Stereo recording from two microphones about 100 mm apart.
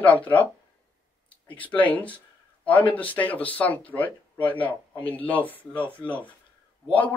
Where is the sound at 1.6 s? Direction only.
15° left (ahead or behind).